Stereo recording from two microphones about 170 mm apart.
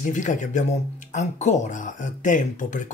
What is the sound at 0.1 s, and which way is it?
Speech, 45° left (ahead or behind).